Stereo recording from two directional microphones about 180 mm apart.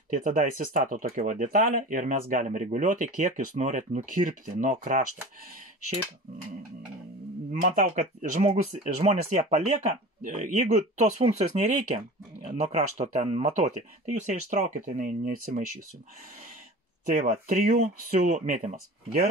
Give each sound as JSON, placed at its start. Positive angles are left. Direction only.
{"t": 0.1, "sound": "speech", "side_deg": -45}
{"t": 7.6, "sound": "speech", "side_deg": -45}
{"t": 17.0, "sound": "speech", "side_deg": -40}